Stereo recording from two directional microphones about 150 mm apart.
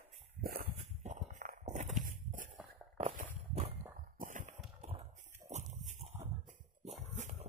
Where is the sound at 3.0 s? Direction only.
50° right (ahead or behind).